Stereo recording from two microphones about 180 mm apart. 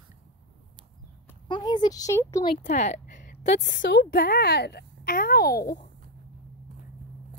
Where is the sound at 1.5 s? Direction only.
25° left (ahead or behind).